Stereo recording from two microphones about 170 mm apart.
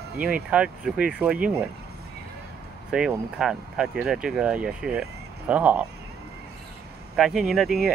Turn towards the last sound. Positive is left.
turn(degrees=0)  # may be behind; listen again after turning